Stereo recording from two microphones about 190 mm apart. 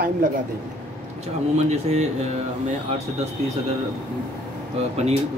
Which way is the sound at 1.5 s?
35° right (ahead or behind).